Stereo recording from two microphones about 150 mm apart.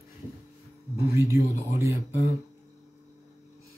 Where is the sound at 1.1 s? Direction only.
20° right (ahead or behind).